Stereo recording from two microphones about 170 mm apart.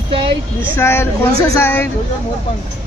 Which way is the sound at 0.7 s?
15° left (ahead or behind).